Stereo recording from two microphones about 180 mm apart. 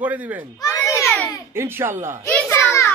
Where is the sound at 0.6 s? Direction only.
15° left (ahead or behind).